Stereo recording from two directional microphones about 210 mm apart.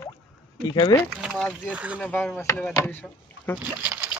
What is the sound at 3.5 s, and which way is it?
Speech, 10° right (ahead or behind).